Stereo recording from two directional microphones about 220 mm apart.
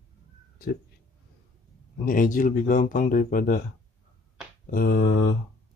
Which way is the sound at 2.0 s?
35° left (ahead or behind).